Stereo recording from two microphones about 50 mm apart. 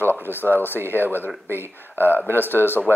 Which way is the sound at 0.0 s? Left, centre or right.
Right.